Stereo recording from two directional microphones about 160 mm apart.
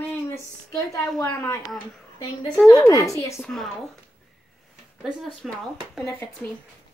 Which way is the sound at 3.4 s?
Centre (ahead or behind).